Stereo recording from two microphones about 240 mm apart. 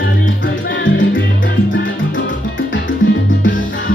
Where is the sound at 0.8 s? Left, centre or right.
Left.